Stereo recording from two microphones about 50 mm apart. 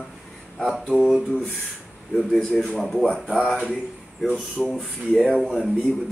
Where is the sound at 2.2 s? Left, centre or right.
Centre.